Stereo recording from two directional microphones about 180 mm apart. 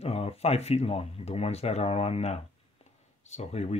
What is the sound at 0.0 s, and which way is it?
Speech, 35° left (ahead or behind).